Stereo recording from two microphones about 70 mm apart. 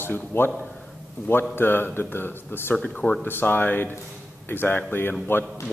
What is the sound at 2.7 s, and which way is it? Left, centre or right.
Speech, centre.